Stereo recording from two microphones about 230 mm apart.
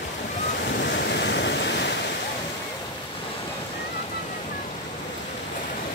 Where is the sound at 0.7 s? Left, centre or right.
Left.